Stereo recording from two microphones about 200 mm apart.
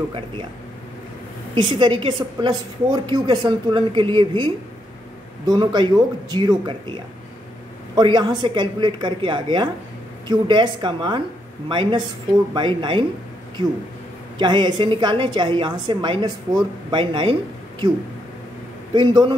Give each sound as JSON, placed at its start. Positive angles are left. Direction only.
{"t": 1.5, "sound": "a woman's voice", "side_deg": -25}
{"t": 5.5, "sound": "a woman's voice", "side_deg": -20}
{"t": 14.4, "sound": "a woman's voice", "side_deg": -20}
{"t": 18.9, "sound": "a woman's voice", "side_deg": -20}